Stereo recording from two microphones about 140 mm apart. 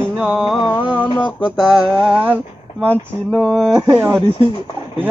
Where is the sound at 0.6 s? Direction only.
35° left (ahead or behind).